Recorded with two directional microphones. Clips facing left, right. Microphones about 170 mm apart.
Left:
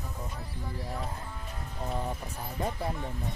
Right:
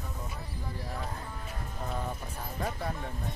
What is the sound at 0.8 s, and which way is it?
Speech, centre (ahead or behind).